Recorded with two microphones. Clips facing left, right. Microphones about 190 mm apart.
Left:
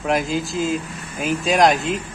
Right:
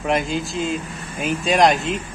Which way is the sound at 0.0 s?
Centre (ahead or behind).